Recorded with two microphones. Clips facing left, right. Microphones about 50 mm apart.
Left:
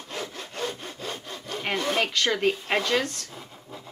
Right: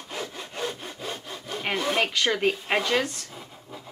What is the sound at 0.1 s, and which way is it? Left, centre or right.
Sawing, centre.